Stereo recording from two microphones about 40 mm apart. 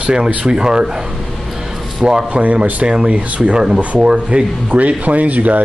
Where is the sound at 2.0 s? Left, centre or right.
Right.